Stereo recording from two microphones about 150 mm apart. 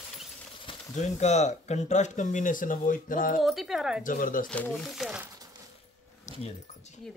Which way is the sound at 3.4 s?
Centre (ahead or behind).